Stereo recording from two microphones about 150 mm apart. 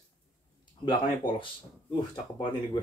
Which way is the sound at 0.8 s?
30° left (ahead or behind).